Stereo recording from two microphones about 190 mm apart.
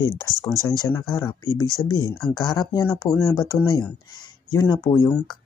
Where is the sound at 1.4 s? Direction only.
90° left.